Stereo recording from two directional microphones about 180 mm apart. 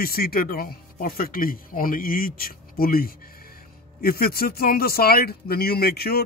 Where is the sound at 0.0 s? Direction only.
55° left (ahead or behind).